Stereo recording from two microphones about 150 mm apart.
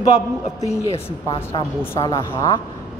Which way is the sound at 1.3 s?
20° left (ahead or behind).